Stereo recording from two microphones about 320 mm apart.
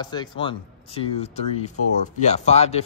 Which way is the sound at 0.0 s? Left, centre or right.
Centre.